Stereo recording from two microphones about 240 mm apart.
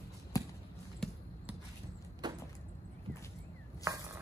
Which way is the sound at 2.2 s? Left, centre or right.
Centre.